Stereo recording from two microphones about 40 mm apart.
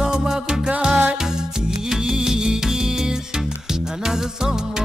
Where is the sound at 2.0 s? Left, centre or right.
Centre.